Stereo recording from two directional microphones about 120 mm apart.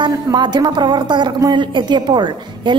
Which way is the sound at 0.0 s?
40° right (ahead or behind).